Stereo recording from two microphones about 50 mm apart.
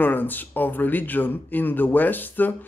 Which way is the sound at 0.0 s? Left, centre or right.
Left.